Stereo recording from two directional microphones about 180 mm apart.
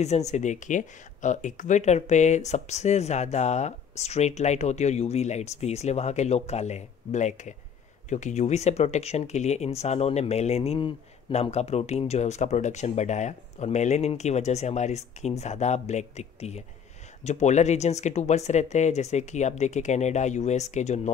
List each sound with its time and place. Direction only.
0.0 s speech: 40° left (ahead or behind)